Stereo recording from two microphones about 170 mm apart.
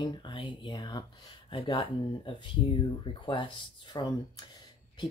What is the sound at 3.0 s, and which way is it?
Speech, 30° left (ahead or behind).